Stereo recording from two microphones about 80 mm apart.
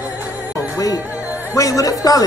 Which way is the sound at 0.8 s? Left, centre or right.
Left.